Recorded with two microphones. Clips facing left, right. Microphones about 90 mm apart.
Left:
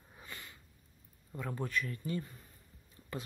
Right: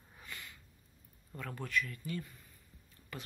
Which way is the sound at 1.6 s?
30° left (ahead or behind).